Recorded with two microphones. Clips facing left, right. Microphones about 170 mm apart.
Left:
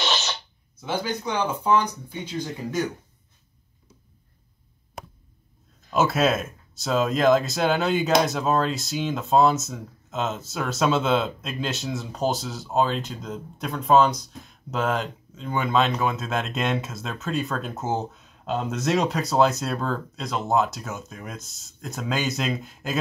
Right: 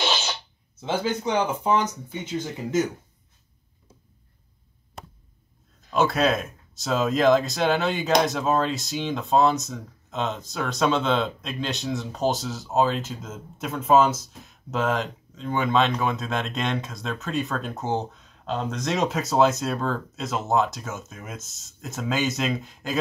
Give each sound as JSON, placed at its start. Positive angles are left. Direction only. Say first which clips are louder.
{"t": 0.7, "sound": "speech", "louder": "right 2 dB", "side_deg": -25}
{"t": 5.9, "sound": "speech", "louder": "even", "side_deg": 5}